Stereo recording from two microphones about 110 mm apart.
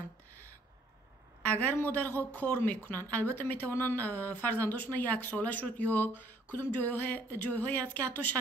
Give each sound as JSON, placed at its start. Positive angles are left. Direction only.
{"t": 1.4, "sound": "speech", "side_deg": 15}